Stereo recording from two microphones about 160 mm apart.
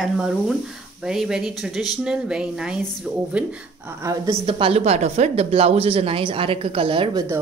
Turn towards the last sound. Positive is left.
turn(degrees=-35)  # may be behind; listen again after turning